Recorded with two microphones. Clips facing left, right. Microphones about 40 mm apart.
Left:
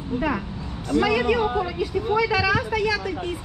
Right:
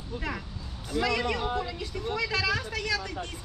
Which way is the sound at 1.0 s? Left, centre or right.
Centre.